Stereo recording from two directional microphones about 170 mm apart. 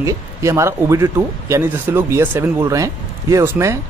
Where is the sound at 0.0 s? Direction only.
15° right (ahead or behind).